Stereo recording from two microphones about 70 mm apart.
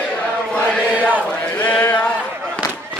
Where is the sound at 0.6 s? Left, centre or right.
Centre.